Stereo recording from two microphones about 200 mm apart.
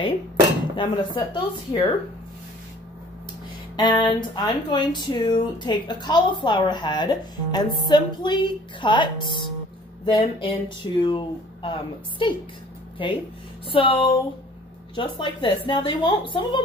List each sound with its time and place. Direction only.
0.7 s speech: 25° left (ahead or behind)
3.7 s speech: 20° left (ahead or behind)